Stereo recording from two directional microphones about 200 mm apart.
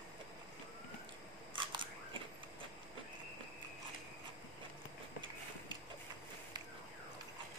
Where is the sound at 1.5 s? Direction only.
25° right (ahead or behind).